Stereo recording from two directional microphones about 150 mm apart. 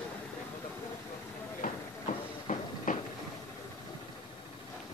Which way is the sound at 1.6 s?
55° left (ahead or behind).